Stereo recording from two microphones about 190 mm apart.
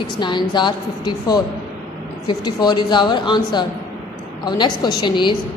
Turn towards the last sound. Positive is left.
turn(degrees=25)  # may be behind; listen again after turning